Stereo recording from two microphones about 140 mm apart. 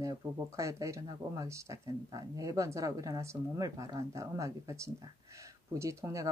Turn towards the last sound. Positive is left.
turn(degrees=-20)  # may be behind; listen again after turning